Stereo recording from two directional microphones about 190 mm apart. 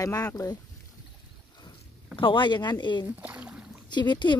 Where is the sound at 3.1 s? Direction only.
10° right (ahead or behind).